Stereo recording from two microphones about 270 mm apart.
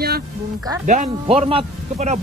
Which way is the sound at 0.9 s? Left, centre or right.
Right.